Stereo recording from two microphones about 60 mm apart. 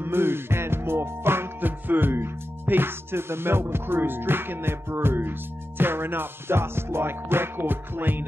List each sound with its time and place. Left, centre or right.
0.0 s music: right